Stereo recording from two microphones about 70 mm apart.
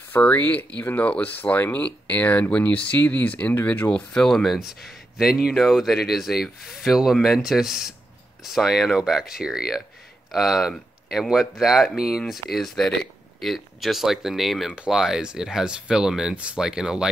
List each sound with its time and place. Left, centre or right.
0.1 s speech: left
3.9 s speech: centre